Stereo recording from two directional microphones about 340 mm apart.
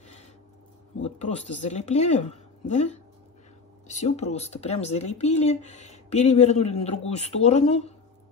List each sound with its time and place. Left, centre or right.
1.0 s speech: centre